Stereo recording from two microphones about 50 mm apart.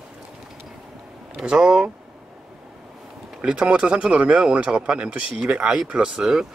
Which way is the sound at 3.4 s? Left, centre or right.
Right.